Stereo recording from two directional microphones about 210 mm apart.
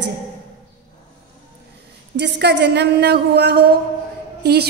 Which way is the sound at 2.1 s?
55° right (ahead or behind).